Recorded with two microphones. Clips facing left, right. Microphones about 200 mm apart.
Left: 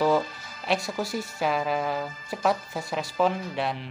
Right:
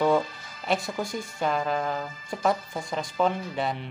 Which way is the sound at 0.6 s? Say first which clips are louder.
Even; centre (ahead or behind).